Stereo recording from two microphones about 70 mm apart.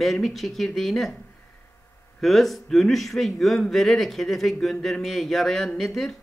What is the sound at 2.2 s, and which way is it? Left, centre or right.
A man's voice, centre.